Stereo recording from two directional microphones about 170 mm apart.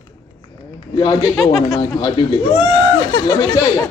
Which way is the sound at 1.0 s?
25° left (ahead or behind).